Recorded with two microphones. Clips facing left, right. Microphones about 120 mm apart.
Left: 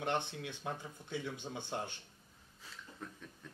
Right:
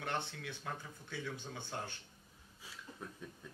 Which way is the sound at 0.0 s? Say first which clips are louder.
Left 4 dB; 20° left (ahead or behind).